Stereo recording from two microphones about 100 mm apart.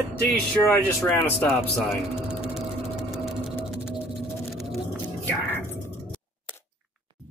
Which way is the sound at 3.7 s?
5° right (ahead or behind).